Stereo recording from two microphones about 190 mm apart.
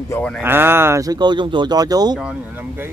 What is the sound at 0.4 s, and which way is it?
Speech, 10° right (ahead or behind).